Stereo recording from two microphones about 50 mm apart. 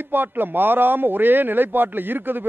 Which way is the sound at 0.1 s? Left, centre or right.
Right.